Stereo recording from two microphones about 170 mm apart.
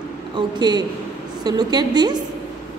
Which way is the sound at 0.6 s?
25° right (ahead or behind).